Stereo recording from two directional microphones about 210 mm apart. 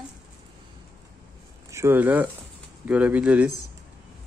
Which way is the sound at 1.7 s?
10° right (ahead or behind).